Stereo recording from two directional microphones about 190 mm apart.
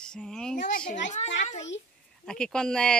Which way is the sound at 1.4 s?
35° left (ahead or behind).